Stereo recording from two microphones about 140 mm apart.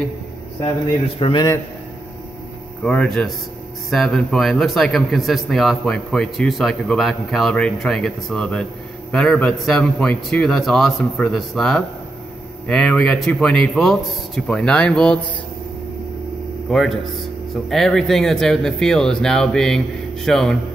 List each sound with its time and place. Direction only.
1.2 s a man's voice: 35° left (ahead or behind)
2.8 s a man's voice: 5° left (ahead or behind)
16.6 s a man's voice: centre (ahead or behind)